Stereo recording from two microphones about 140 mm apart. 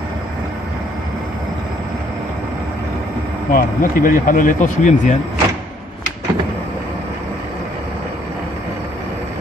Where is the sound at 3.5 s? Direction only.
75° left (ahead or behind).